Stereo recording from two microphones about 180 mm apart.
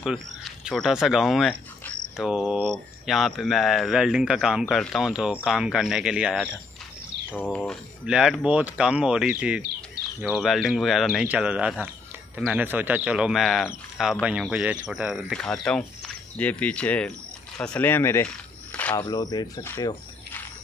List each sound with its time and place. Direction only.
0.0 s speech: centre (ahead or behind)
7.2 s speech: 10° left (ahead or behind)
19.0 s speech: 20° left (ahead or behind)